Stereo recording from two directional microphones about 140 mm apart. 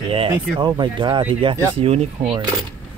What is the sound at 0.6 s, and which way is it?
Speech, 35° right (ahead or behind).